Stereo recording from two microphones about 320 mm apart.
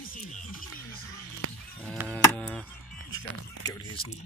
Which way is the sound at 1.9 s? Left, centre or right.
Centre.